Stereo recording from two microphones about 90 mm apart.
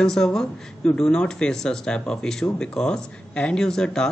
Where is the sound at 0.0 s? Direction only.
5° left (ahead or behind).